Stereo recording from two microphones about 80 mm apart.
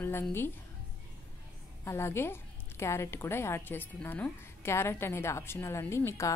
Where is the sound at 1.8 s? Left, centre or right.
Left.